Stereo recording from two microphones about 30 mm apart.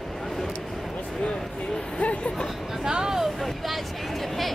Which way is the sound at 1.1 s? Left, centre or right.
Left.